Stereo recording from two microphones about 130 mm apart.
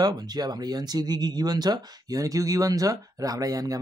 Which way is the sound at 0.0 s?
30° right (ahead or behind).